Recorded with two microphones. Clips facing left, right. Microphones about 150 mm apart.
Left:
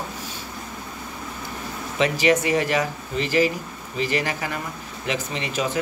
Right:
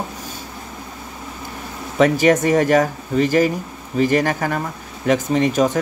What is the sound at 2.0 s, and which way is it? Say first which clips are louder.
Speech: right 6 dB; 45° right (ahead or behind).